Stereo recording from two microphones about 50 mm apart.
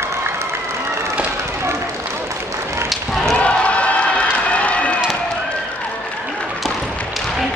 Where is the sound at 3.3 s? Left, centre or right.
Left.